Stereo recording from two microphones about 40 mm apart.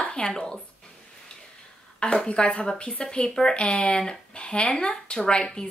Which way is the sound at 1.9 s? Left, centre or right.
Left.